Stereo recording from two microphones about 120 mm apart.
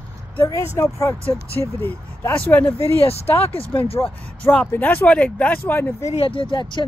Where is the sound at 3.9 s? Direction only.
10° left (ahead or behind).